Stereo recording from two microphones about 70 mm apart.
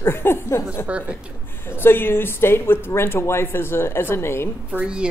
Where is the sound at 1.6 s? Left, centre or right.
Left.